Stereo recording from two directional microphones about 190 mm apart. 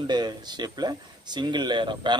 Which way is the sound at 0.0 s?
20° right (ahead or behind).